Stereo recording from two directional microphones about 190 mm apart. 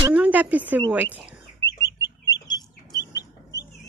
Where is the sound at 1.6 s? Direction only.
15° left (ahead or behind).